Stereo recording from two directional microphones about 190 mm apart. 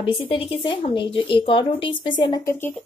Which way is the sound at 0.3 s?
30° left (ahead or behind).